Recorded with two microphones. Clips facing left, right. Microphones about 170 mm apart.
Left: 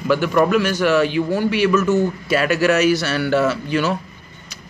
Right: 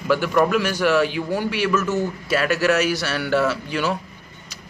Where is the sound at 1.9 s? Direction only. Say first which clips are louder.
Left 5 dB; 5° right (ahead or behind).